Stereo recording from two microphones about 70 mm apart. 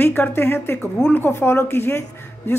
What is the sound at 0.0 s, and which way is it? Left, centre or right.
A woman's voice, left.